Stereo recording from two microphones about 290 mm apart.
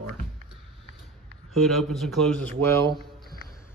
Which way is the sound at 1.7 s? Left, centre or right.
Centre.